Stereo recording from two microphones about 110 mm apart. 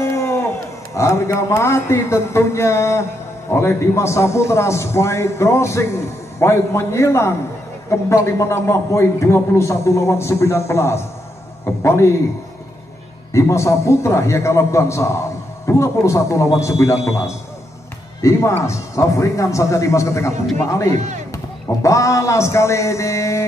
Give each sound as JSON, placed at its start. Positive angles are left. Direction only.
{"t": 0.0, "sound": "a sound", "side_deg": 25}
{"t": 0.9, "sound": "a man's voice", "side_deg": 25}
{"t": 13.3, "sound": "a man's voice", "side_deg": 25}